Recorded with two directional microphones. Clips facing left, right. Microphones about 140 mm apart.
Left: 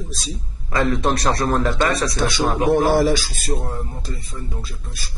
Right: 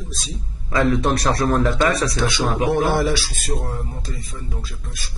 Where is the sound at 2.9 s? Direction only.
45° left (ahead or behind).